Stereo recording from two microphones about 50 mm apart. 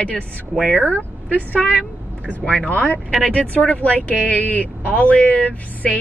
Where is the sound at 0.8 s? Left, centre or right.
Left.